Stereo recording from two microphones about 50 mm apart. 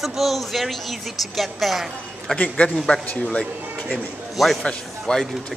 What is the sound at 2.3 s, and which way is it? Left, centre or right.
A man's voice, centre.